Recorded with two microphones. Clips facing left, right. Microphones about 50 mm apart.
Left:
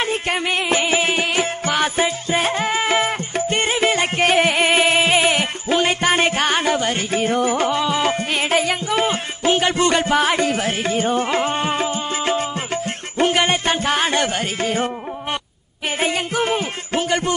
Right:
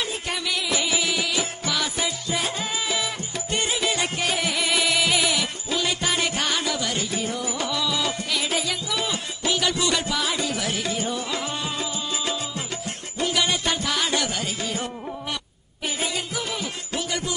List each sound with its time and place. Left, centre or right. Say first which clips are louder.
0.0 s music: left 7 dB; left
16.0 s music: left 10 dB; left